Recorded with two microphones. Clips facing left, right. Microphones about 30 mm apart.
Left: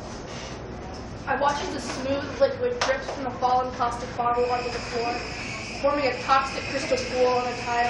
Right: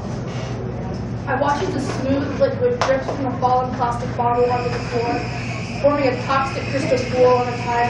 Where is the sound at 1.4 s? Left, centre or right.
Centre.